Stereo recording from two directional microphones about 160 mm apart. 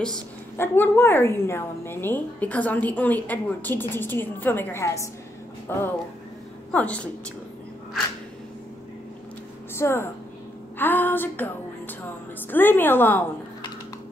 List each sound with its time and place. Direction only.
0.6 s a woman's voice: 15° left (ahead or behind)
9.8 s a woman's voice: 15° left (ahead or behind)